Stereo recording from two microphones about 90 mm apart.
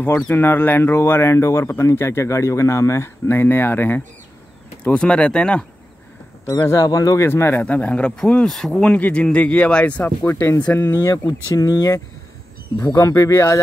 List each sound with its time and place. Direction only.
0.3 s speech: 25° left (ahead or behind)
4.8 s speech: 10° left (ahead or behind)
6.6 s speech: 35° left (ahead or behind)
7.2 s speech: 25° left (ahead or behind)
7.6 s speech: 15° left (ahead or behind)
8.9 s speech: 15° left (ahead or behind)
10.8 s speech: 30° left (ahead or behind)
11.2 s speech: 45° left (ahead or behind)